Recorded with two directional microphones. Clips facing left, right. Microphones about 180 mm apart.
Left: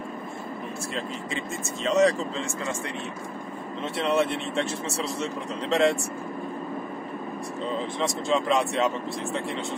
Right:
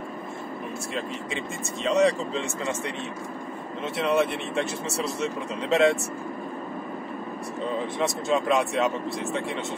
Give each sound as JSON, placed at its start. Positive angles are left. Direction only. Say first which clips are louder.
{"t": 1.8, "sound": "speech", "louder": "even", "side_deg": 0}
{"t": 3.8, "sound": "speech", "louder": "right 1 dB", "side_deg": 0}
{"t": 8.3, "sound": "speech", "louder": "even", "side_deg": 0}